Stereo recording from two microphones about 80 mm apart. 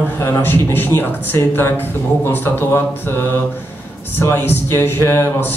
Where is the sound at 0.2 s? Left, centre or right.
Left.